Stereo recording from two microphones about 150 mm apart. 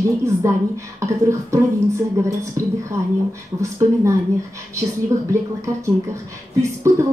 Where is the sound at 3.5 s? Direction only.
25° right (ahead or behind).